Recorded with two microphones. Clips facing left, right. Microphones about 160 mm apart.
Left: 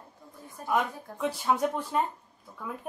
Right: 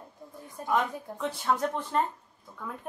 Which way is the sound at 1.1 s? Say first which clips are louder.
Left 2 dB; 5° left (ahead or behind).